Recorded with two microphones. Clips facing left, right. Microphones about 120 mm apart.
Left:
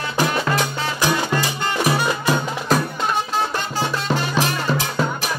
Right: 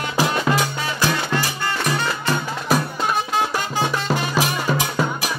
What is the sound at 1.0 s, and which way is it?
Music, 20° left (ahead or behind).